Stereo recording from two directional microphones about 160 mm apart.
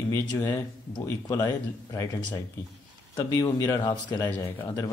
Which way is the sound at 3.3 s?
25° left (ahead or behind).